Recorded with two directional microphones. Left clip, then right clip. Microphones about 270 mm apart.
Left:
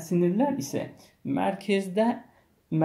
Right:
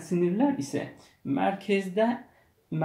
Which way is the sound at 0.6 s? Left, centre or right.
Left.